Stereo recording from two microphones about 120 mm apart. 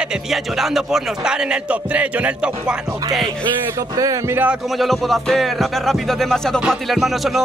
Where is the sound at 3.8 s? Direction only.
30° right (ahead or behind).